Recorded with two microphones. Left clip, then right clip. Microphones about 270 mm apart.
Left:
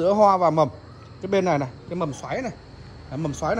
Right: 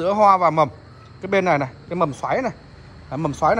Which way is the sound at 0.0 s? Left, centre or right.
Centre.